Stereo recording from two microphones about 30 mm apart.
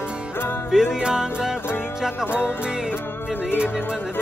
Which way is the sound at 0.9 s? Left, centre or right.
Right.